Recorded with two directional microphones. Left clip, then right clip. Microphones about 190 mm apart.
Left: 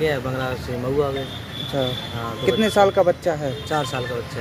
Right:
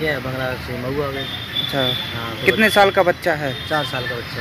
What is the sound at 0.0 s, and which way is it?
Speech, 30° left (ahead or behind).